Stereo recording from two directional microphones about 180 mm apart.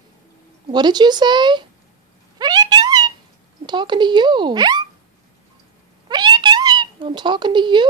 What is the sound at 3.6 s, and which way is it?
Speech, 25° right (ahead or behind).